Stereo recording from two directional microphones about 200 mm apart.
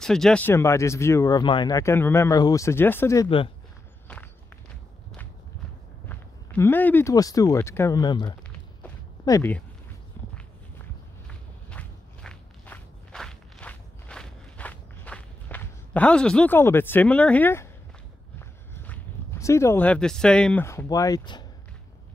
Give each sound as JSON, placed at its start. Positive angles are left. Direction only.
{"t": 0.0, "sound": "speech", "side_deg": 0}
{"t": 3.3, "sound": "speech", "side_deg": 25}
{"t": 6.0, "sound": "speech", "side_deg": 10}
{"t": 11.2, "sound": "walk", "side_deg": 5}
{"t": 18.4, "sound": "speech", "side_deg": 10}